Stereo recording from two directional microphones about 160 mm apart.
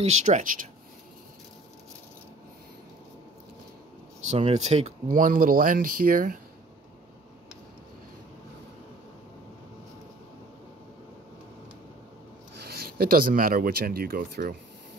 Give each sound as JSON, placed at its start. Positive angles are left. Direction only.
{"t": 0.0, "sound": "speech", "side_deg": -45}
{"t": 4.3, "sound": "speech", "side_deg": -45}
{"t": 12.5, "sound": "speech", "side_deg": -75}